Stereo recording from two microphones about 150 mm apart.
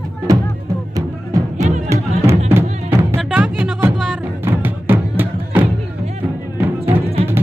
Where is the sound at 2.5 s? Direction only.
15° right (ahead or behind).